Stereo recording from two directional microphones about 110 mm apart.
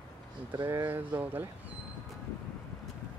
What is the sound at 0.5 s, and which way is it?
Speech, 35° right (ahead or behind).